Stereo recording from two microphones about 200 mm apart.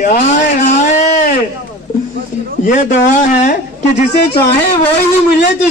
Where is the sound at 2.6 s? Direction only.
40° left (ahead or behind).